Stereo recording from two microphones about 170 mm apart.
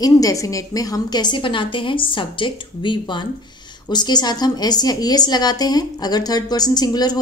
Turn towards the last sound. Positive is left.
turn(degrees=25)  # may be behind; listen again after turning